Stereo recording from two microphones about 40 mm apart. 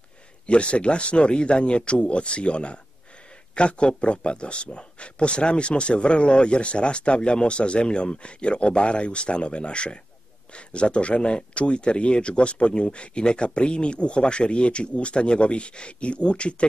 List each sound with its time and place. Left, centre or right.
0.5 s a man's voice: left